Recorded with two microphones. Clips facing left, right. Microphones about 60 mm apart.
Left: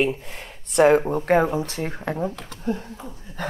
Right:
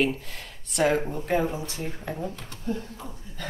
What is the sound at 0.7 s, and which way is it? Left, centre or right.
Speech, left.